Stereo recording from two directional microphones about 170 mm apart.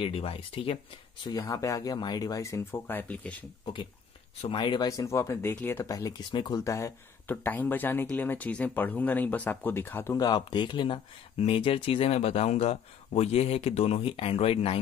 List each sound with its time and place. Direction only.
0.0 s speech: 35° left (ahead or behind)
1.2 s speech: 20° left (ahead or behind)
4.4 s speech: 30° left (ahead or behind); by 10.2 s 15° left (ahead or behind)
10.2 s speech: 25° left (ahead or behind)